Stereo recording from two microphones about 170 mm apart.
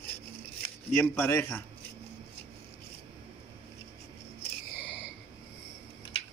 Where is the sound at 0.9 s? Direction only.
15° left (ahead or behind).